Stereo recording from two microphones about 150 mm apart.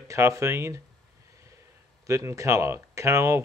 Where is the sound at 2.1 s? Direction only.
20° right (ahead or behind).